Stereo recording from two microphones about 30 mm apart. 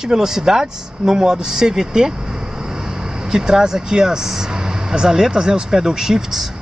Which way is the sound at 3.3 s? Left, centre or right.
Right.